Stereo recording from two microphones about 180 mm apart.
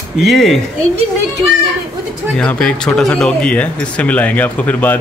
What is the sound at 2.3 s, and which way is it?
Speech, 5° left (ahead or behind).